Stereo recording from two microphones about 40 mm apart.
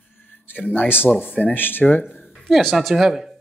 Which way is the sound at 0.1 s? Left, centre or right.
Left.